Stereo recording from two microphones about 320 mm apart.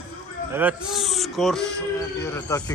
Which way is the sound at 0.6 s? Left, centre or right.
Centre.